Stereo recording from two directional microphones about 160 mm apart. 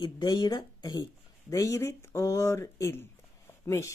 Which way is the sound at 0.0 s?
25° left (ahead or behind).